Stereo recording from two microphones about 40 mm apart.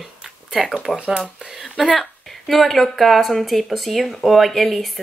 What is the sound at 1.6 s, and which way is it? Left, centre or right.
Speech, centre.